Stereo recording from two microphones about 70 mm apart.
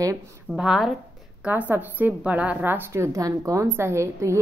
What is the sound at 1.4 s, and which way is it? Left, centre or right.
A woman's voice, right.